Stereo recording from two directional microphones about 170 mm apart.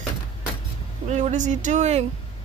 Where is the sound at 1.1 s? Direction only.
45° right (ahead or behind).